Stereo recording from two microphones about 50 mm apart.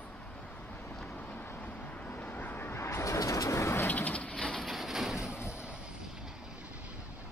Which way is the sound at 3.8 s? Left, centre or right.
Left.